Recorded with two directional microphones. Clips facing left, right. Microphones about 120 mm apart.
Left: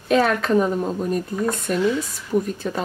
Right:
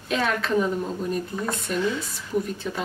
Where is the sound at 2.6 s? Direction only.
45° left (ahead or behind).